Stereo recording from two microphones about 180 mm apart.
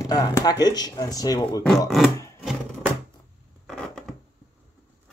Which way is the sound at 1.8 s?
Centre (ahead or behind).